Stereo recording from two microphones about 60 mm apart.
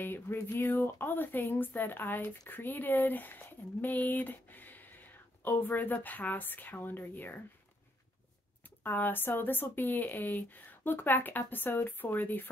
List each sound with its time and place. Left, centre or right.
0.0 s speech: left
8.8 s speech: left